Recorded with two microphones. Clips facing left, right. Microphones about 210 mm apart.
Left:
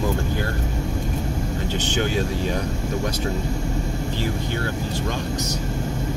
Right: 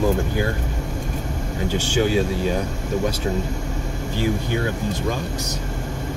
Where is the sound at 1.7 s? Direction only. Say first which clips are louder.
Right 5 dB; 10° right (ahead or behind).